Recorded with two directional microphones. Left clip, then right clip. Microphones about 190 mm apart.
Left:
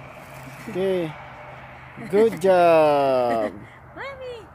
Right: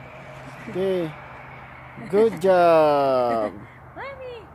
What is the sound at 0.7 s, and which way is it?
Speech, 10° left (ahead or behind).